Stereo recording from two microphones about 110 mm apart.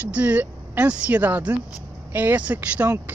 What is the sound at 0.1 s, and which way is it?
A woman's voice, 15° right (ahead or behind).